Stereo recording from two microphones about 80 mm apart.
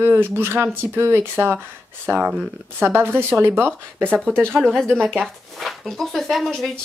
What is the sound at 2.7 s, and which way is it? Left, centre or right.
Speech, right.